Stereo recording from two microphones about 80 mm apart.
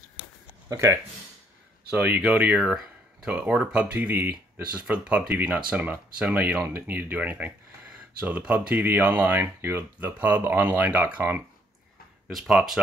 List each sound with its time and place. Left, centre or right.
0.7 s speech: right
2.0 s speech: right
2.6 s a sound: centre
3.3 s speech: centre
12.3 s speech: centre